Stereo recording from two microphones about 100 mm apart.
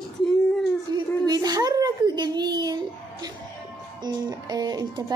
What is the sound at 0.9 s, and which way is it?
A child's voice, 40° right (ahead or behind).